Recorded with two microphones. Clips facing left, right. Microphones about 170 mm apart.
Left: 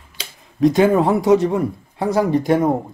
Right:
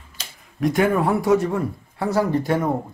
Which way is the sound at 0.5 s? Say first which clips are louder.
Left 5 dB; 25° left (ahead or behind).